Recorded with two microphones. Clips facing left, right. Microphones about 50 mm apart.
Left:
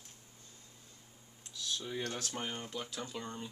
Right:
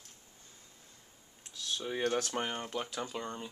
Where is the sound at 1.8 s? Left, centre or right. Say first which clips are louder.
Right 9 dB; right.